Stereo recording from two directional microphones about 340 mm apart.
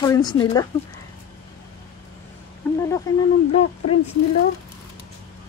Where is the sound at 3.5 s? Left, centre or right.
Centre.